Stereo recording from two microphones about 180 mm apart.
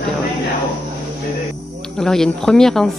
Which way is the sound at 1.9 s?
5° left (ahead or behind).